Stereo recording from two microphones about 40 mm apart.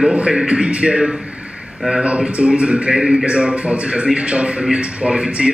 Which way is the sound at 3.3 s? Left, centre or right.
Right.